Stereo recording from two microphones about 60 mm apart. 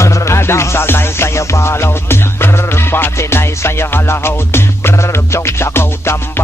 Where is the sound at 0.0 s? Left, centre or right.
Left.